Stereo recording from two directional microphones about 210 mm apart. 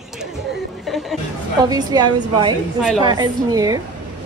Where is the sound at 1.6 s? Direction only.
20° right (ahead or behind).